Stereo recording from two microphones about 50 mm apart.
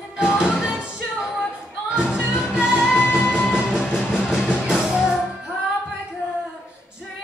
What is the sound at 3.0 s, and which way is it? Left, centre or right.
Music, left.